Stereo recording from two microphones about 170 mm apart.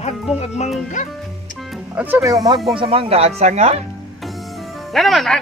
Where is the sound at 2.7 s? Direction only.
30° right (ahead or behind).